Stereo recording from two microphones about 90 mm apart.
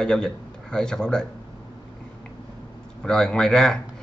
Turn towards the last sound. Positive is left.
turn(degrees=5)  # may be behind; listen again after turning